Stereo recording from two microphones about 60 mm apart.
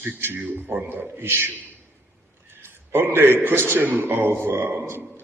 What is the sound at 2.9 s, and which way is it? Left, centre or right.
A man's voice, right.